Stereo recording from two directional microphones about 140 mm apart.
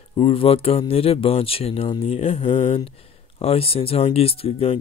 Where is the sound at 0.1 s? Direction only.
40° left (ahead or behind).